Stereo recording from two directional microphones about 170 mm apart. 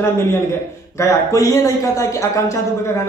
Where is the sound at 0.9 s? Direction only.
20° left (ahead or behind).